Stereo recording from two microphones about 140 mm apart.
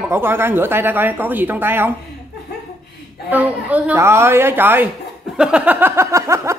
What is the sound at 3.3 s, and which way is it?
Speech, 10° right (ahead or behind).